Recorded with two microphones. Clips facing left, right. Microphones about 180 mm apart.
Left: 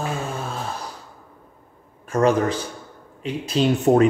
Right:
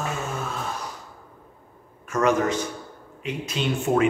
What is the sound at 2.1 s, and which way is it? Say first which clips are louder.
Speech: left 3 dB; 30° left (ahead or behind).